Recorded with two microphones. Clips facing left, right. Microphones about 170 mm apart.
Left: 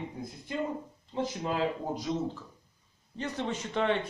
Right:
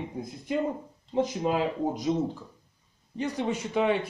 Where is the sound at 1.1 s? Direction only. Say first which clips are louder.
Right 5 dB; 20° right (ahead or behind).